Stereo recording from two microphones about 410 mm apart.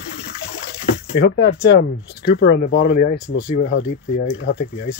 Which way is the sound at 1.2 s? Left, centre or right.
Left.